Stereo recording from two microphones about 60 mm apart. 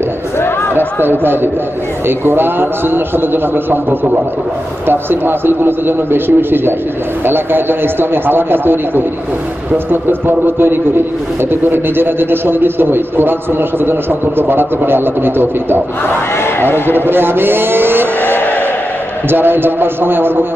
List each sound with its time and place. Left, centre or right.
0.4 s a sound: left
1.0 s a man's voice: right
16.5 s a man's voice: left
16.9 s a man's voice: right
18.2 s a sound: left
19.2 s a man's voice: right